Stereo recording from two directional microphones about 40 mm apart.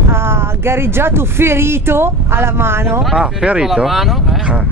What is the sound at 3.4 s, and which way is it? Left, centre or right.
Speech, right.